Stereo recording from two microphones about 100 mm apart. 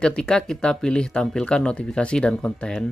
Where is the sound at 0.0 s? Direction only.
10° left (ahead or behind).